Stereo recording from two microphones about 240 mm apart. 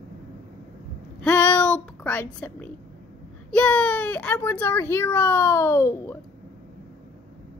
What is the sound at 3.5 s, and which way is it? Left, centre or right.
Speech, centre.